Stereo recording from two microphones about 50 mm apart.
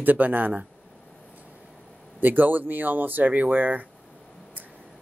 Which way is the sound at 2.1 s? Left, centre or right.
Right.